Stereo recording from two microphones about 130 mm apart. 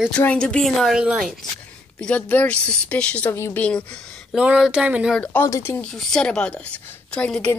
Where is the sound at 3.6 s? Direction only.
10° left (ahead or behind).